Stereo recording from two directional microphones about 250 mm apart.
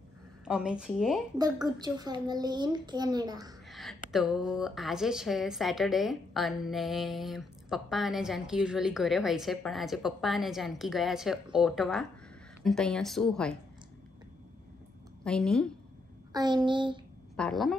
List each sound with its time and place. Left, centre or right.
0.5 s a woman's voice: centre
1.4 s a child's voice: centre
3.6 s a woman's voice: centre
15.2 s a woman's voice: centre
16.3 s speech: centre
17.4 s a woman's voice: centre